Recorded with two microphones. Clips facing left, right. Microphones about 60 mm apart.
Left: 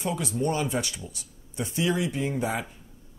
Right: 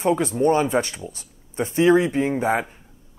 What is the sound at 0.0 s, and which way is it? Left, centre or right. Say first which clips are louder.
Speech: right 9 dB; right.